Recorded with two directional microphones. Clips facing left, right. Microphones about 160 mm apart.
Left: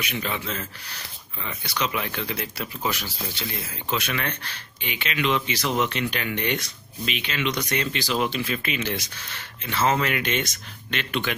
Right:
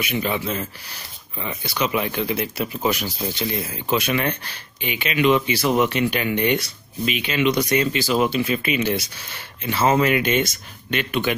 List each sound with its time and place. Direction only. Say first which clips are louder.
0.0 s speech: right 6 dB; 10° right (ahead or behind)
1.7 s speech: right 5 dB; 10° right (ahead or behind)